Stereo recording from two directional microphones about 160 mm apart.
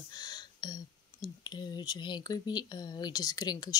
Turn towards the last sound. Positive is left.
turn(degrees=25)  # may be behind; listen again after turning